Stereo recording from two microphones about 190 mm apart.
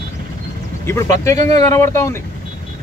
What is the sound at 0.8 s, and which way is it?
Speech, 15° left (ahead or behind).